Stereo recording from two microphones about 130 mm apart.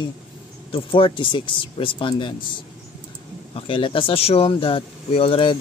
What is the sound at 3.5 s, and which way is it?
Speech, 40° left (ahead or behind).